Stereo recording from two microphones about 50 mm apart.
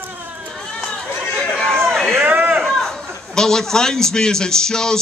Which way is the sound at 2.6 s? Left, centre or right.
Centre.